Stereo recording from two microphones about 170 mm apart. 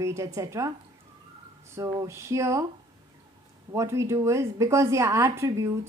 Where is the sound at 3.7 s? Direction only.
15° right (ahead or behind).